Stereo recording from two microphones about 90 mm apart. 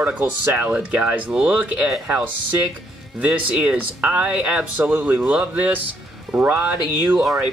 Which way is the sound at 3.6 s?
10° right (ahead or behind).